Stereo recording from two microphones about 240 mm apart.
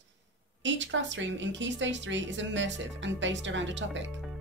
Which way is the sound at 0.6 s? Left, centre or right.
Right.